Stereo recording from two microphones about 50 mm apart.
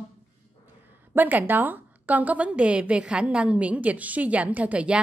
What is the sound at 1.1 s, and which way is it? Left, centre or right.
A woman's voice, right.